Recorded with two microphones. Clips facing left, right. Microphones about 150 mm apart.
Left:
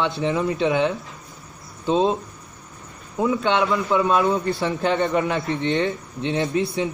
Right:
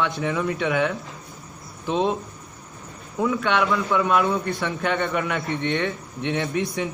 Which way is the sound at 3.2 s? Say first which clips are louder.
Left 2 dB; 25° left (ahead or behind).